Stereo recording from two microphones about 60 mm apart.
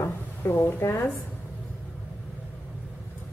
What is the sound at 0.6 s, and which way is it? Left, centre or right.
Speech, left.